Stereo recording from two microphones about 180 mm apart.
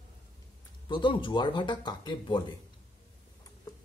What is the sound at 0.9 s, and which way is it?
Speech, 25° left (ahead or behind).